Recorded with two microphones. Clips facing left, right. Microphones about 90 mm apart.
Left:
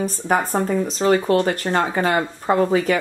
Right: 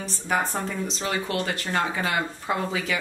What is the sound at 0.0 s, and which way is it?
Speech, 45° left (ahead or behind).